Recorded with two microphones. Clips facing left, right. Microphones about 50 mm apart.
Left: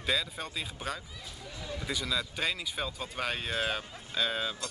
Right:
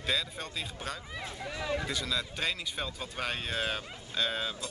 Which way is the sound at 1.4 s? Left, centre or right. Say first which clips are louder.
Right 7 dB; right.